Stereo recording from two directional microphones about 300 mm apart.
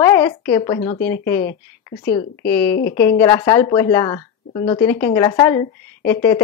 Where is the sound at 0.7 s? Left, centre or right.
Left.